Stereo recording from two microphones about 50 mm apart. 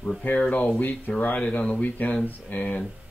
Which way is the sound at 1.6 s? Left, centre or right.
Left.